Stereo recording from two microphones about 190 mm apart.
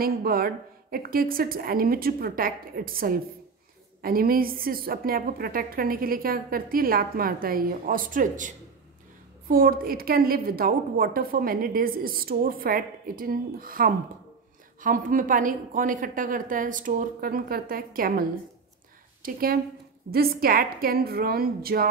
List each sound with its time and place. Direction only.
0.0 s a woman's voice: 50° right (ahead or behind)
19.2 s a woman's voice: 50° right (ahead or behind)